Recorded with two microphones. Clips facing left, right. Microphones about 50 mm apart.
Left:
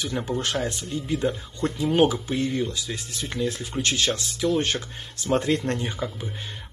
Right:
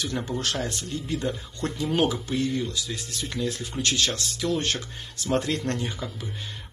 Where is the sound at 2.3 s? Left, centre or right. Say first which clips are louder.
Left 1 dB; left.